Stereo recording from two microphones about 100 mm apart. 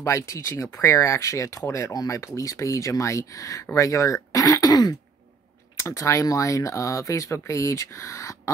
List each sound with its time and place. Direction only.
0.0 s speech: 30° left (ahead or behind)